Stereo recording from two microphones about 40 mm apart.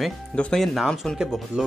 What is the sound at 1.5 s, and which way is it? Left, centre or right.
Speech, right.